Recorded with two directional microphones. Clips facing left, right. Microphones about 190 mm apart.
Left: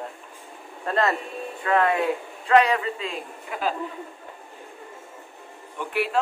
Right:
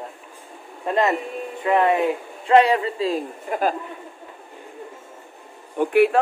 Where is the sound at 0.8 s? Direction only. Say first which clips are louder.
Right 3 dB; 15° right (ahead or behind); by 3.7 s 45° right (ahead or behind).